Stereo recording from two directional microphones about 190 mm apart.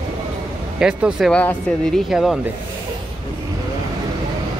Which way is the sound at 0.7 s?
5° right (ahead or behind).